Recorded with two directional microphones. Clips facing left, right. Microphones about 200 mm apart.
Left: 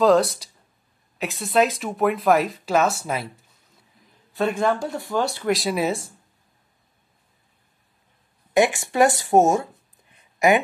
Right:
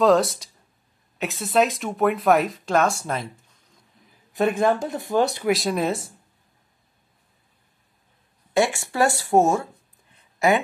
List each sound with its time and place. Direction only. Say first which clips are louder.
0.0 s speech: left 1 dB; centre (ahead or behind)
4.3 s speech: right 2 dB; 20° right (ahead or behind)
5.5 s speech: even; centre (ahead or behind)
8.5 s speech: left 3 dB; 15° left (ahead or behind)